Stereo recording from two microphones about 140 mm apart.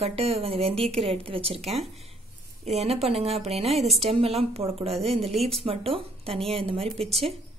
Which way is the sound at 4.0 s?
45° right (ahead or behind).